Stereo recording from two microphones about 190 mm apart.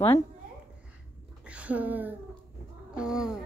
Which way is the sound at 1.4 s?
5° right (ahead or behind).